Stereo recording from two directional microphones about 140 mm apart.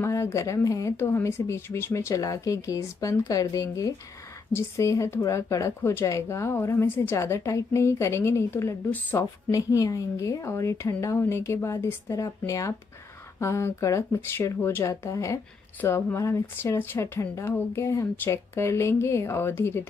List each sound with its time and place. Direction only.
0.0 s speech: 20° left (ahead or behind)